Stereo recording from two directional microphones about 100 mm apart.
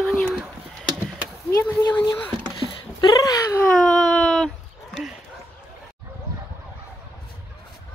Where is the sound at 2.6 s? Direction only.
60° right (ahead or behind).